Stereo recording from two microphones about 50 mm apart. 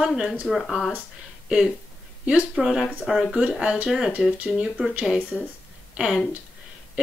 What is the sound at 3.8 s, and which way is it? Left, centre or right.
Speech, centre.